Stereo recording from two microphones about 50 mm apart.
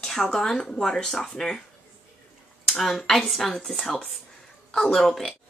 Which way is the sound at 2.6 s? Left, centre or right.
Centre.